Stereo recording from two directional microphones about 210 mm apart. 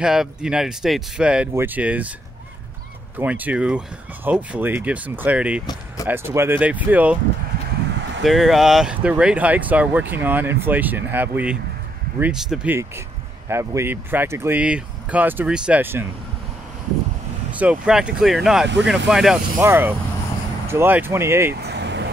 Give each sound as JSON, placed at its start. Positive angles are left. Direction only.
{"t": 0.0, "sound": "speech", "side_deg": -5}
{"t": 3.2, "sound": "speech", "side_deg": -10}
{"t": 8.2, "sound": "speech", "side_deg": 0}
{"t": 17.5, "sound": "speech", "side_deg": -5}
{"t": 21.5, "sound": "vehicle", "side_deg": -50}